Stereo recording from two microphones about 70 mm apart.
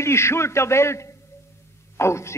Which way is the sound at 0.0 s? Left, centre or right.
Left.